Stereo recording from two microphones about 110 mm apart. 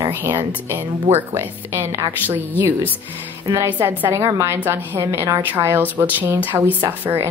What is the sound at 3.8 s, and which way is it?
A woman's voice, 15° right (ahead or behind).